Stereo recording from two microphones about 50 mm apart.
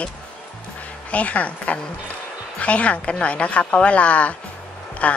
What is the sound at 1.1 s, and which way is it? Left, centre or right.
A woman's voice, left.